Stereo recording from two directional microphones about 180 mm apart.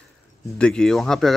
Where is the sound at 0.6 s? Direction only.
5° left (ahead or behind).